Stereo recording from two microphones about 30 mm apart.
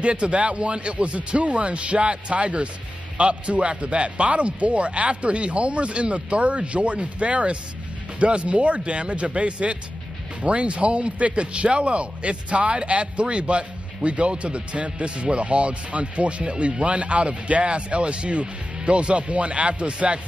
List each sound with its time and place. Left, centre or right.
0.0 s a man's voice: right
19.7 s speech: right